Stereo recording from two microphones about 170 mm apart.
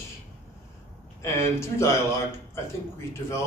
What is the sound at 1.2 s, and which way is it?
Speech, 15° left (ahead or behind).